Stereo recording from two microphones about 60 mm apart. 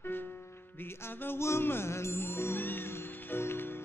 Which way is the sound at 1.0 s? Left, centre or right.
Left.